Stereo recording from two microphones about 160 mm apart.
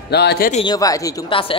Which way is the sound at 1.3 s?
35° left (ahead or behind).